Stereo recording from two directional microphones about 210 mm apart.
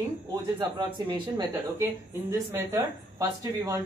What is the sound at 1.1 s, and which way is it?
Speech, 20° right (ahead or behind).